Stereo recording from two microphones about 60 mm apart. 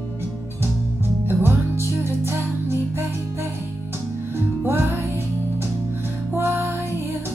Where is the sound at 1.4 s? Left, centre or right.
Right.